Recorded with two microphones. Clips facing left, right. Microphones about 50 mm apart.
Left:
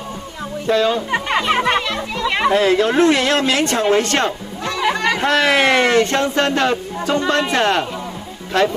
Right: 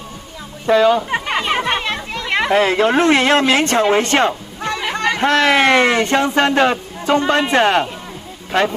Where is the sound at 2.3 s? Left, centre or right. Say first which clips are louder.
Even; right.